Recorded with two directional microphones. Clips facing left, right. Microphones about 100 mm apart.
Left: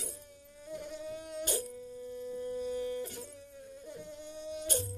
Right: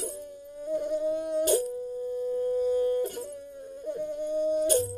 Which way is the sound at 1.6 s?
45° right (ahead or behind).